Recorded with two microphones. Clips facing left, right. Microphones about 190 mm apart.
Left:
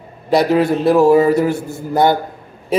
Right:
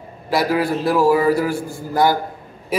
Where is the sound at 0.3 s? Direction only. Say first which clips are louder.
Left 5 dB; 25° left (ahead or behind).